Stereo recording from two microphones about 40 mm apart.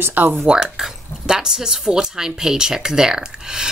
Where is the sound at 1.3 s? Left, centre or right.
Centre.